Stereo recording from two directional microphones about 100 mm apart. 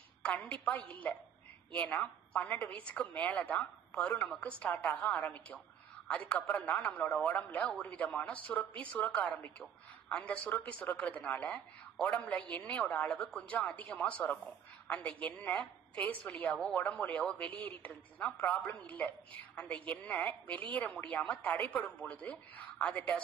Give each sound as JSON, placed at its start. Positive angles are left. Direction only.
{"t": 0.2, "sound": "a woman's voice", "side_deg": 15}